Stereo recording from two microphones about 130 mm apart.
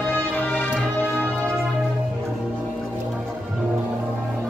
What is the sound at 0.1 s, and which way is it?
Music, 15° left (ahead or behind).